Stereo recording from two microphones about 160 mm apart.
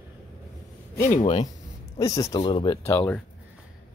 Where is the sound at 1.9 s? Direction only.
20° left (ahead or behind).